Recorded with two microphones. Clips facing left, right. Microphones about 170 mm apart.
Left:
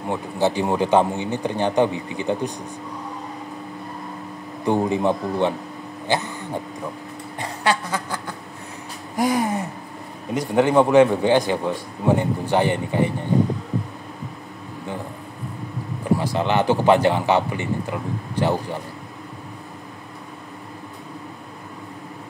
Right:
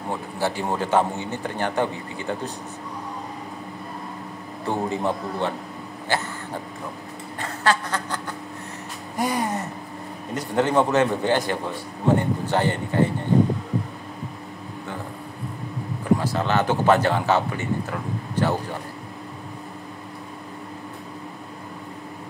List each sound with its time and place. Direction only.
0.1 s a man's voice: 20° left (ahead or behind)
4.6 s a man's voice: 15° left (ahead or behind)
7.3 s quack: 15° left (ahead or behind)
9.1 s a sound: 10° left (ahead or behind)
10.3 s a man's voice: 10° left (ahead or behind)
16.2 s a man's voice: 15° left (ahead or behind)